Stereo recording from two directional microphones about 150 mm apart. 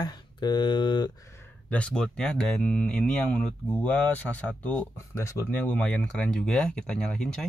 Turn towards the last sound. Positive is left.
turn(degrees=5)  # may be behind; listen again after turning